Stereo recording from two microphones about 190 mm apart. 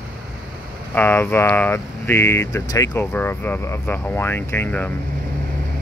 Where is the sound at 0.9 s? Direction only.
10° left (ahead or behind).